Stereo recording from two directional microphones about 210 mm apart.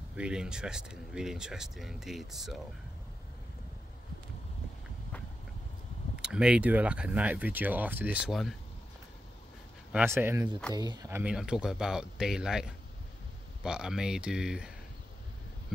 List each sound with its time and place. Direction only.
0.1 s speech: 5° right (ahead or behind)
6.1 s speech: 5° right (ahead or behind)
9.9 s speech: 10° right (ahead or behind)